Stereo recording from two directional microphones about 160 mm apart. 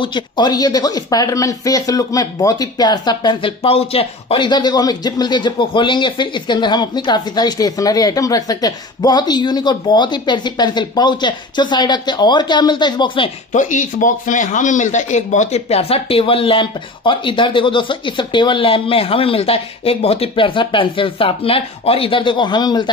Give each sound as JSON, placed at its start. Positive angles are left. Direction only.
{"t": 0.0, "sound": "speech", "side_deg": 30}
{"t": 13.5, "sound": "speech", "side_deg": 50}